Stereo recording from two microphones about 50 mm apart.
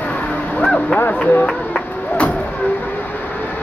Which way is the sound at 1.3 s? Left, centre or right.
Left.